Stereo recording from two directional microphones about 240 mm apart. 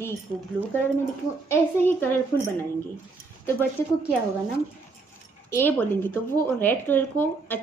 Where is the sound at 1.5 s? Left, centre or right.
Centre.